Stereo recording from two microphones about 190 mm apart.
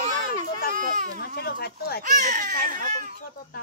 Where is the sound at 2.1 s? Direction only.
45° right (ahead or behind).